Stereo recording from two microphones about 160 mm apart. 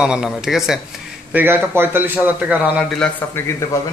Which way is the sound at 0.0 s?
5° right (ahead or behind).